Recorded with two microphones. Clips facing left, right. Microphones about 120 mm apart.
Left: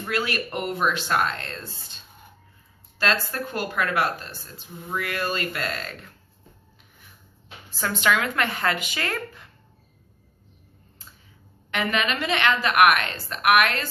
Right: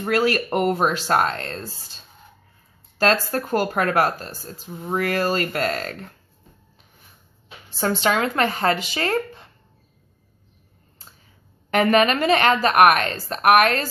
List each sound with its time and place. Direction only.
0.0 s speech: 40° right (ahead or behind)
3.0 s speech: 40° right (ahead or behind)
7.7 s speech: 30° right (ahead or behind)
11.7 s speech: 45° right (ahead or behind)